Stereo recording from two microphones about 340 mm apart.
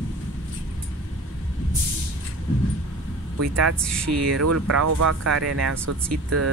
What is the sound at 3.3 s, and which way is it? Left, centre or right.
Speech, right.